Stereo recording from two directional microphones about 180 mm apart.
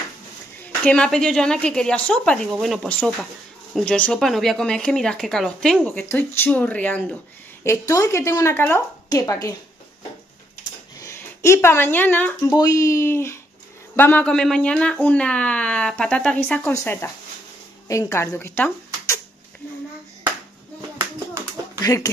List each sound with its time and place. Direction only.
0.7 s speech: 5° left (ahead or behind)
11.0 s speech: 15° left (ahead or behind)
21.4 s clapping: 15° right (ahead or behind)
21.7 s speech: 15° left (ahead or behind)